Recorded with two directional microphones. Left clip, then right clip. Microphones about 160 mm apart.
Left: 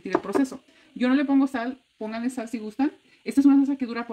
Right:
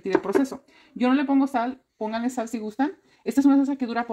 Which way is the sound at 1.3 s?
40° right (ahead or behind).